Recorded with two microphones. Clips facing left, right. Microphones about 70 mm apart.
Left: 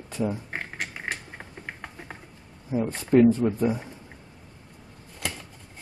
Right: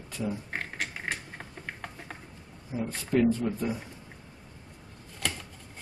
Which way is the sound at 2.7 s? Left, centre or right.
Left.